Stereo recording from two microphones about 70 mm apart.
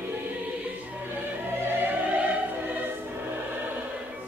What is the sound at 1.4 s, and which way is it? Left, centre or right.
Music, right.